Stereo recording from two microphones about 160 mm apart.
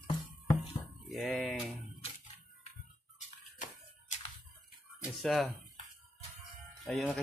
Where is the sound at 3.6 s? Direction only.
50° left (ahead or behind).